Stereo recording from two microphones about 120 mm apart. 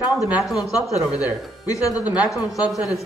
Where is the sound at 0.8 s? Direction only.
10° right (ahead or behind).